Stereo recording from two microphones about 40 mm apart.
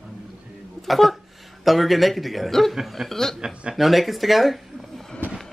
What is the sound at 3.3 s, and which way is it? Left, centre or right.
Speech, centre.